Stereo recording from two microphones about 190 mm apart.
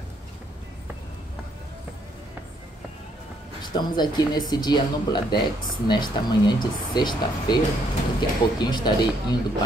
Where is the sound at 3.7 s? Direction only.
20° left (ahead or behind).